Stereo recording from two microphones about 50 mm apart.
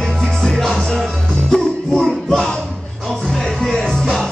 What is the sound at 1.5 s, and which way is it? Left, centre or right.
Music, left.